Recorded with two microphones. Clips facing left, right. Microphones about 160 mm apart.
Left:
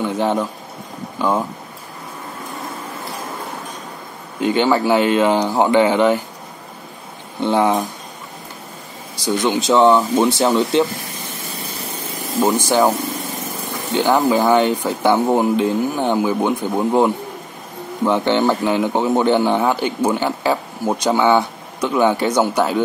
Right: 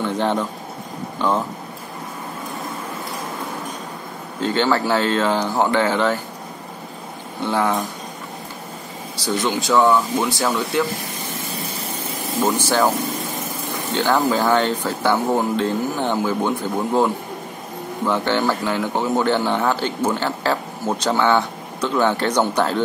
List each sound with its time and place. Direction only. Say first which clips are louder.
0.0 s a sound: left 2 dB; 10° left (ahead or behind)
1.2 s speech: left 2 dB; 10° left (ahead or behind)
4.4 s speech: left 3 dB; 15° left (ahead or behind)
7.4 s speech: left 4 dB; 20° left (ahead or behind)
9.1 s speech: left 3 dB; 15° left (ahead or behind)
12.4 s speech: left 3 dB; 15° left (ahead or behind)
13.9 s speech: left 3 dB; 15° left (ahead or behind)